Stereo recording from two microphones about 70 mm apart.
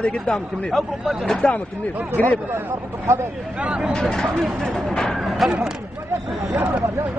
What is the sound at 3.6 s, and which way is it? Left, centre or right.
Speech, centre.